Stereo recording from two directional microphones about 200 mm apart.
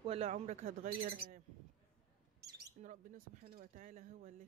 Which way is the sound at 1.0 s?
45° right (ahead or behind).